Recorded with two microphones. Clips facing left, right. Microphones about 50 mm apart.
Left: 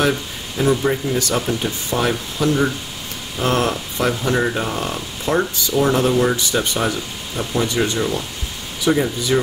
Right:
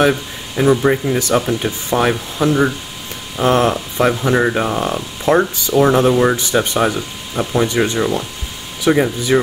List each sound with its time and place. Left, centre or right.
0.6 s speech: right
8.8 s speech: right